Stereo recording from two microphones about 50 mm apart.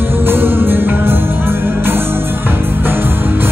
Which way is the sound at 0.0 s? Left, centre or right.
Right.